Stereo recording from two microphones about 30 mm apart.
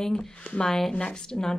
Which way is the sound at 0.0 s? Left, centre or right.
Centre.